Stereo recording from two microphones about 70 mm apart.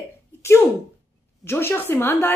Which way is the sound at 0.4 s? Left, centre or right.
Left.